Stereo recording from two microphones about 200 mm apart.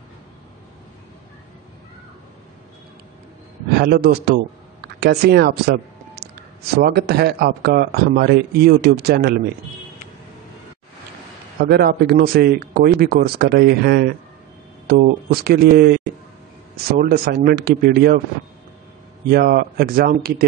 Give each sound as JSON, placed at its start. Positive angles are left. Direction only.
{"t": 3.7, "sound": "speech", "side_deg": -50}
{"t": 11.6, "sound": "speech", "side_deg": -50}
{"t": 19.2, "sound": "speech", "side_deg": -50}